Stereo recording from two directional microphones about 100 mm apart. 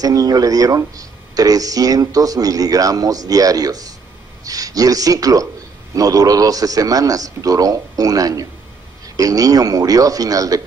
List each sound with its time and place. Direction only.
0.0 s speech: 40° right (ahead or behind)